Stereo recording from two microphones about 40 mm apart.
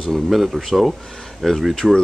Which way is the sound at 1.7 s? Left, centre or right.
Centre.